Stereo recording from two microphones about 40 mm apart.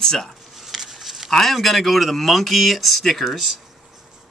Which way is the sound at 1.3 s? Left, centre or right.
Centre.